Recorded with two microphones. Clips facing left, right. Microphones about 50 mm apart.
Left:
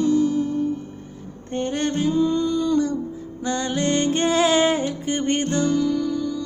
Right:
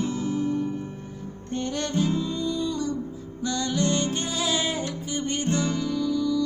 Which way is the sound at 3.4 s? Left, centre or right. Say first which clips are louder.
Left 3 dB; left.